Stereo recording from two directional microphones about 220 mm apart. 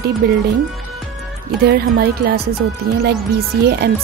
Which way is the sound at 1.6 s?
45° right (ahead or behind).